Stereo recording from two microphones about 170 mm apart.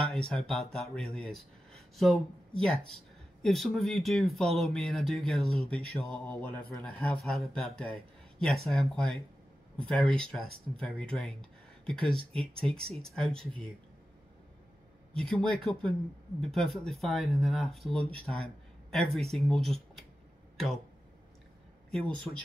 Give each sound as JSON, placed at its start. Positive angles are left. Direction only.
{"t": 0.0, "sound": "speech", "side_deg": 0}
{"t": 15.1, "sound": "speech", "side_deg": 5}